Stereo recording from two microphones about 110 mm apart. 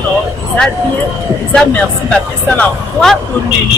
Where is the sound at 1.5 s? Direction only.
10° left (ahead or behind).